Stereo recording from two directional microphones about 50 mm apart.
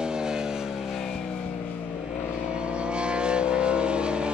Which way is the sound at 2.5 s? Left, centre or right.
Right.